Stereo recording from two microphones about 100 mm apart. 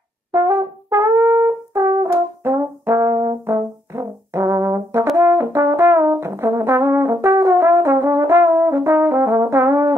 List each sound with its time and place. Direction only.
0.3 s brass instrument: 30° right (ahead or behind)